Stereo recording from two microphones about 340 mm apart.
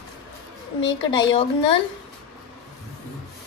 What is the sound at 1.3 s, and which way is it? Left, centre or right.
Speech, centre.